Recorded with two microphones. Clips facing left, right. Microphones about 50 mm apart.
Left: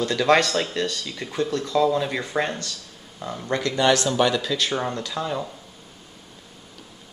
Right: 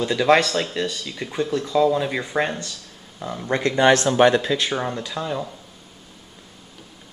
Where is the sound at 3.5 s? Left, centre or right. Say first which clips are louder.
Right 3 dB; right.